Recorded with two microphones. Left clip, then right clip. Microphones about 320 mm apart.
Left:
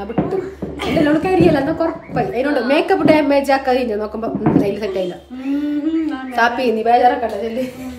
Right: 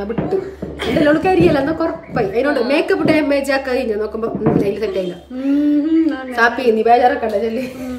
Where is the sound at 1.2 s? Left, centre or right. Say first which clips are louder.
Right 1 dB; centre.